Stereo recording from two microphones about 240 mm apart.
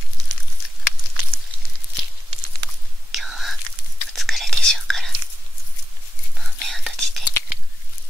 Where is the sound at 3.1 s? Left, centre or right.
Centre.